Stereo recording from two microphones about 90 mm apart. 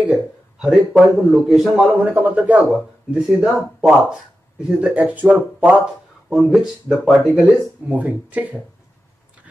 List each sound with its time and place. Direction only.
0.6 s a man's voice: 5° right (ahead or behind)
2.0 s speech: 15° right (ahead or behind)